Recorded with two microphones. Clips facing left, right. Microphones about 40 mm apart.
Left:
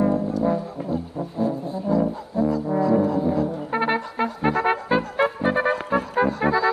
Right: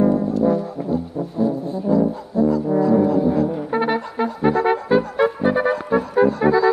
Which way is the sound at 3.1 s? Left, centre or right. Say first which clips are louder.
Right 4 dB; centre.